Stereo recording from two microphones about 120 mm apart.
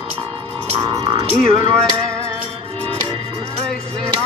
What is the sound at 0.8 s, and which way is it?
Music, 40° right (ahead or behind).